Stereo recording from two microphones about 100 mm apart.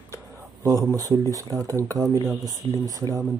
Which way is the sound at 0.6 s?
35° right (ahead or behind).